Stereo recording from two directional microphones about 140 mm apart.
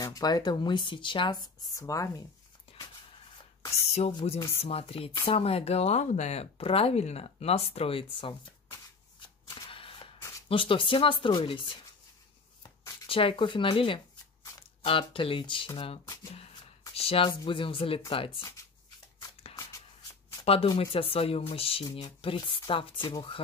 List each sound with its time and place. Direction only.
0.0 s speech: 30° left (ahead or behind)
4.2 s speech: 45° left (ahead or behind)
9.6 s single-lens reflex camera: 40° left (ahead or behind)
10.5 s speech: 40° left (ahead or behind)
20.4 s speech: 40° left (ahead or behind)